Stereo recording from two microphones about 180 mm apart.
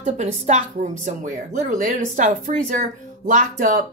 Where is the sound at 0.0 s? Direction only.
40° right (ahead or behind).